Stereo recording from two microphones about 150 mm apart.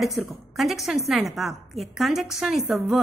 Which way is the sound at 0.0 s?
Centre (ahead or behind).